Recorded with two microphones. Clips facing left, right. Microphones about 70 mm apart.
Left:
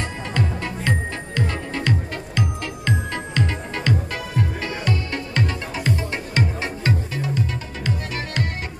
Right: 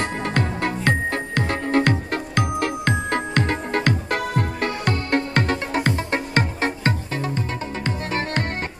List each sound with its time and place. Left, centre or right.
0.0 s music: right